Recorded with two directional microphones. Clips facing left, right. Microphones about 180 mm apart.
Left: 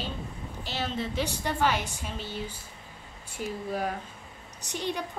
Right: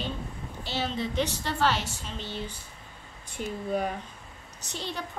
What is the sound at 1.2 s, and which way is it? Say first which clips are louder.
A woman's voice: even; 15° left (ahead or behind).